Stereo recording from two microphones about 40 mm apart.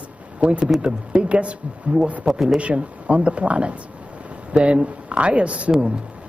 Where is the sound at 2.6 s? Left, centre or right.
Right.